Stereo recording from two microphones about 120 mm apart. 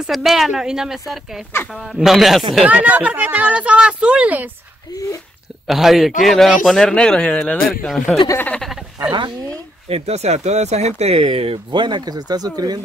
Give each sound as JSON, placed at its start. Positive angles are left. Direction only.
{"t": 0.0, "sound": "a man's voice", "side_deg": 0}
{"t": 5.7, "sound": "a man's voice", "side_deg": 0}
{"t": 8.6, "sound": "a man's voice", "side_deg": -5}
{"t": 9.8, "sound": "speech", "side_deg": -60}